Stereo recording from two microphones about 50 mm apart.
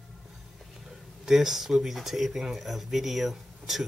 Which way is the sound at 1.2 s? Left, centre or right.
Centre.